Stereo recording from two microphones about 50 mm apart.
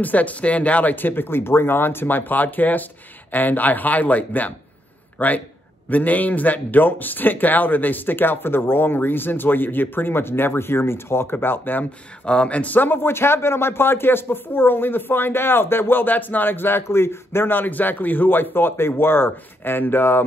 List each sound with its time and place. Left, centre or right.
0.0 s speech: left
11.3 s speech: left
12.3 s speech: left